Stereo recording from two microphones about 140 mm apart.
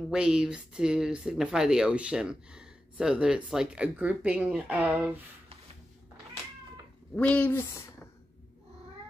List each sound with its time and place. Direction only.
0.1 s speech: 5° right (ahead or behind)
7.2 s speech: 10° left (ahead or behind)